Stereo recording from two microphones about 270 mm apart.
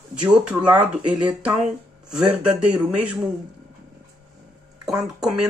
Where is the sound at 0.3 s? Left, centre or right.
Centre.